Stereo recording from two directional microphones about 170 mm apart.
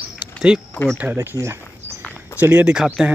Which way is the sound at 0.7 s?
10° left (ahead or behind).